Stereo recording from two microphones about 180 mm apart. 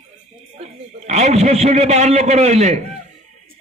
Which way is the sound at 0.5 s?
35° right (ahead or behind).